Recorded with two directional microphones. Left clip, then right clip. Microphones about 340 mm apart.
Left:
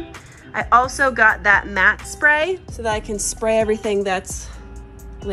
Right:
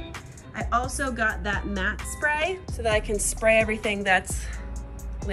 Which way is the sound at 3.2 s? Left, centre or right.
Centre.